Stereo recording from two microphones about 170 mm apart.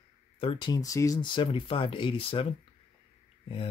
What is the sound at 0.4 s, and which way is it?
Speech, 30° left (ahead or behind).